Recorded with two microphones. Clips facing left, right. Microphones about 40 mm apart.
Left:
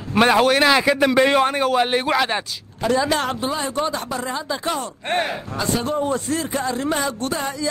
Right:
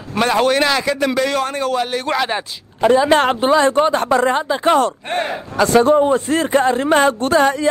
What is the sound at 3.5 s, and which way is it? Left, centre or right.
Speech, right.